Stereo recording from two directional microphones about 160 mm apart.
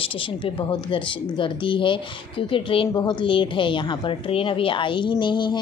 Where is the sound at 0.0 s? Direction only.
35° left (ahead or behind).